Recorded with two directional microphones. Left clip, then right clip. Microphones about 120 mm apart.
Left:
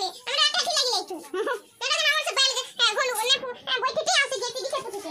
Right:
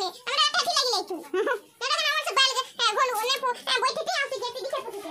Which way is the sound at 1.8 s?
65° right (ahead or behind).